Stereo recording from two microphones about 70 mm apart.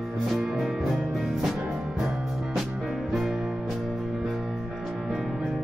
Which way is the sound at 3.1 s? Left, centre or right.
Centre.